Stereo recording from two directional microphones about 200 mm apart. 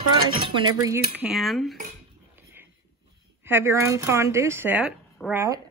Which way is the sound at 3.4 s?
10° right (ahead or behind).